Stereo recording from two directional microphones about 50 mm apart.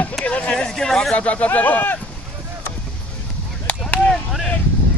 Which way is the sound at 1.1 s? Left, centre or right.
Left.